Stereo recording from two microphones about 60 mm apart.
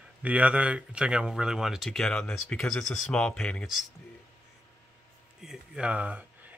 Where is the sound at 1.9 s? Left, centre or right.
Centre.